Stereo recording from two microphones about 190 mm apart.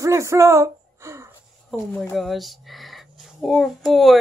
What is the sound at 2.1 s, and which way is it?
A child's voice, centre (ahead or behind).